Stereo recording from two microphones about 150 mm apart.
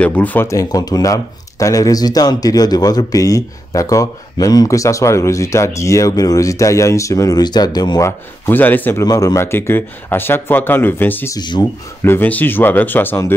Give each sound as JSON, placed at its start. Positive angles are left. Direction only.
{"t": 0.0, "sound": "speech", "side_deg": 10}
{"t": 8.5, "sound": "speech", "side_deg": 10}
{"t": 11.3, "sound": "speech", "side_deg": 30}
{"t": 12.0, "sound": "speech", "side_deg": 15}